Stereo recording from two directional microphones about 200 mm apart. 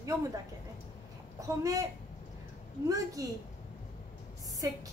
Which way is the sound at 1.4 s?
15° right (ahead or behind).